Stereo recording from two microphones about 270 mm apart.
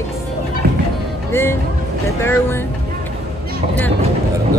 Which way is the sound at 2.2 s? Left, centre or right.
Centre.